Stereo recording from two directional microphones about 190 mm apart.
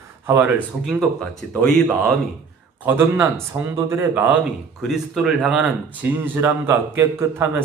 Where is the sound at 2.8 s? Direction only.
10° right (ahead or behind).